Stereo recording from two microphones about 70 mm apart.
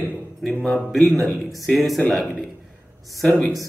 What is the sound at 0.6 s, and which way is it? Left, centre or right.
A man's voice, centre.